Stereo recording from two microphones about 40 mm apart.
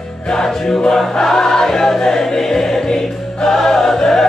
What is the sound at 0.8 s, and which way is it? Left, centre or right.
Choir, centre.